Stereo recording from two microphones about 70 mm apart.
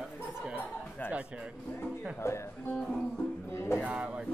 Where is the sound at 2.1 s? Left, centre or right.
Left.